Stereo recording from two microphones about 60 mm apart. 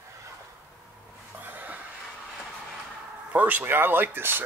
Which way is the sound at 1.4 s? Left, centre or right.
Right.